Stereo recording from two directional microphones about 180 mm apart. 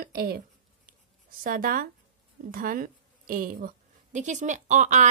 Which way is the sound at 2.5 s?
50° right (ahead or behind).